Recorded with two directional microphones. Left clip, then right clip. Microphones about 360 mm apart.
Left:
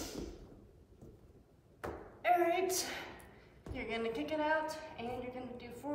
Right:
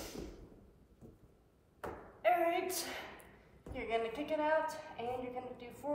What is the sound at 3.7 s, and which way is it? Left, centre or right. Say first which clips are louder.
A woman's voice: right 1 dB; centre.